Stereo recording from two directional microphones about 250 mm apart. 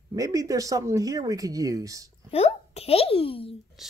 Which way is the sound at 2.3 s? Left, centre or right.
Left.